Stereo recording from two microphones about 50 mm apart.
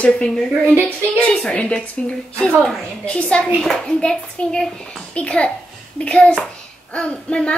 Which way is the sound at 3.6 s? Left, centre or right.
Centre.